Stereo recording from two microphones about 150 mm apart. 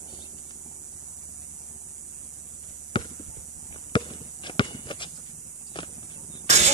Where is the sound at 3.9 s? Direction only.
30° left (ahead or behind).